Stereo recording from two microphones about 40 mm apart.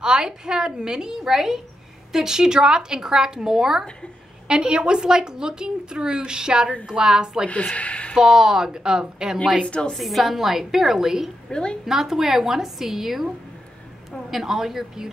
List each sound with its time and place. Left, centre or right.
0.0 s speech: centre
4.5 s a woman's voice: right
7.4 s a woman's voice: left
8.2 s speech: centre
9.9 s speech: centre
11.4 s a woman's voice: left
11.8 s speech: centre
14.3 s speech: centre